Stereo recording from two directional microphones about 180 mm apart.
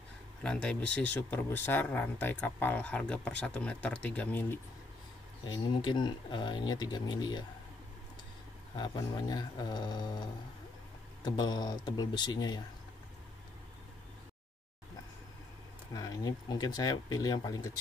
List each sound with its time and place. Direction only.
0.4 s speech: 5° left (ahead or behind)
5.4 s speech: 25° left (ahead or behind)
8.7 s speech: 25° left (ahead or behind)
11.2 s speech: 25° left (ahead or behind)
15.9 s speech: 20° left (ahead or behind)